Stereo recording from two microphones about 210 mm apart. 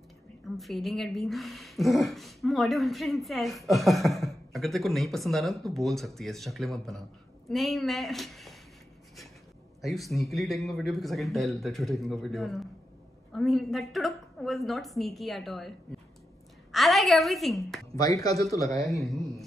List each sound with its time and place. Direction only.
0.6 s speech: centre (ahead or behind)
9.8 s speech: centre (ahead or behind)
16.7 s speech: centre (ahead or behind)
17.9 s speech: 15° left (ahead or behind)